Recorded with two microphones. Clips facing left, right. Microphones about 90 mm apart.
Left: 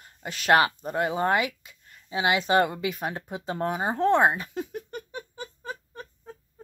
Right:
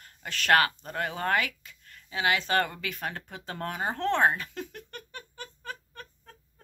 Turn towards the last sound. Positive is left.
turn(degrees=15)  # may be behind; listen again after turning